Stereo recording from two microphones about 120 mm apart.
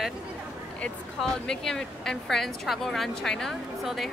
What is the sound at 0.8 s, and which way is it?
Speech, 5° left (ahead or behind).